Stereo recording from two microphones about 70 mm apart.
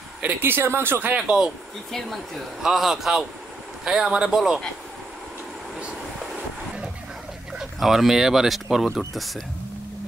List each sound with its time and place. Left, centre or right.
0.4 s speech: right
1.1 s a man's voice: centre
1.9 s a man's voice: centre
7.5 s speech: centre